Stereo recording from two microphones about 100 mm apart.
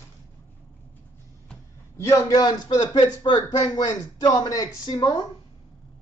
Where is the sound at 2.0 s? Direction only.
30° left (ahead or behind).